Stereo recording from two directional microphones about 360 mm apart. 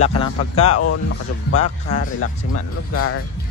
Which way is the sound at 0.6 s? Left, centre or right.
Left.